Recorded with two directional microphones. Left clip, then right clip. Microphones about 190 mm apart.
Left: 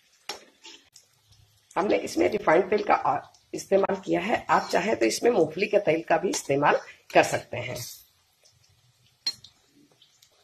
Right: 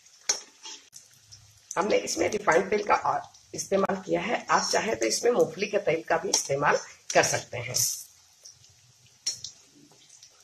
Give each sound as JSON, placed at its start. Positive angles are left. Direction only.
{"t": 1.7, "sound": "speech", "side_deg": 30}